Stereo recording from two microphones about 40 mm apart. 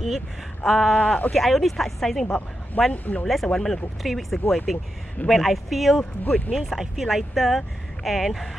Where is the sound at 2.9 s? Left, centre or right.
Left.